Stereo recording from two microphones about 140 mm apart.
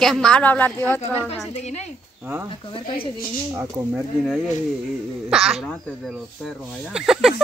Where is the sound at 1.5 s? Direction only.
50° left (ahead or behind).